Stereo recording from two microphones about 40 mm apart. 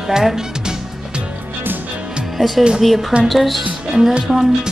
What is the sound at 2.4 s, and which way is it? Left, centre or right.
A woman's voice, centre.